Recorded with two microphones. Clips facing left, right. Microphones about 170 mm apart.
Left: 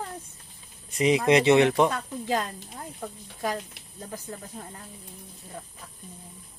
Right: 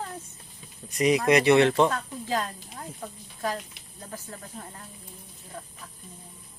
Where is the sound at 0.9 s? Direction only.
25° left (ahead or behind).